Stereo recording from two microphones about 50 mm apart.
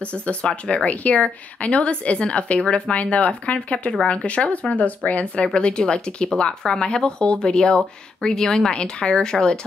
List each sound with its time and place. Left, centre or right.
0.0 s speech: left
0.8 s speech: left